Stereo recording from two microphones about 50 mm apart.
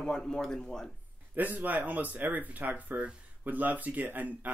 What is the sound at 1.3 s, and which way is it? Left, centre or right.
Speech, right.